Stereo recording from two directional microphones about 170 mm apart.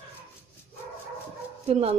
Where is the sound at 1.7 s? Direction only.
35° right (ahead or behind).